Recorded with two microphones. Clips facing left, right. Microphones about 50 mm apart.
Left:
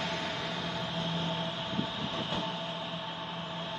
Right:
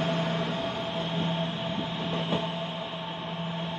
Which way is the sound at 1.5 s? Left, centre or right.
Right.